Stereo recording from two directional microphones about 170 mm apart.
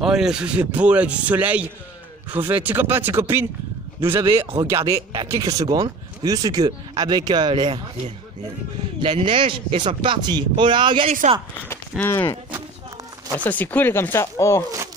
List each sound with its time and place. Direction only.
0.0 s a man's voice: 5° right (ahead or behind); by 11.1 s 30° right (ahead or behind)
12.0 s speech: 10° left (ahead or behind)
13.4 s speech: 10° left (ahead or behind)